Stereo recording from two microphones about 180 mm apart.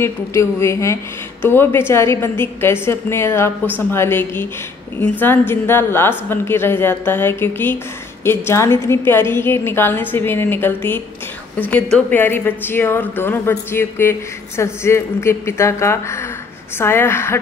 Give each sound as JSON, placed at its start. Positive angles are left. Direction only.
{"t": 0.0, "sound": "a woman's voice", "side_deg": 15}
{"t": 5.5, "sound": "a woman's voice", "side_deg": 15}